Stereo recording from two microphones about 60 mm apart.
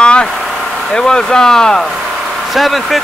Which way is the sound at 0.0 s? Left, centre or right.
Centre.